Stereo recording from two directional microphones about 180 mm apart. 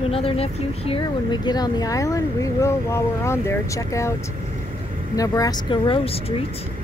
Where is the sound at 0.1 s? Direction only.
30° left (ahead or behind); by 4.1 s 15° left (ahead or behind).